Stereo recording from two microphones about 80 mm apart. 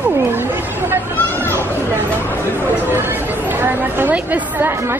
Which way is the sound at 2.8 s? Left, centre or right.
Right.